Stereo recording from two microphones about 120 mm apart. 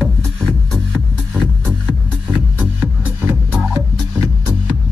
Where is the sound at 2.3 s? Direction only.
15° right (ahead or behind).